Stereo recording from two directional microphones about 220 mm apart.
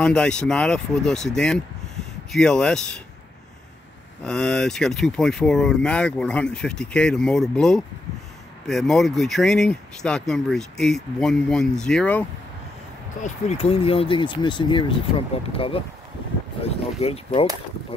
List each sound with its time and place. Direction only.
0.0 s speech: 5° left (ahead or behind)
4.2 s speech: 5° left (ahead or behind)
13.2 s speech: 30° left (ahead or behind)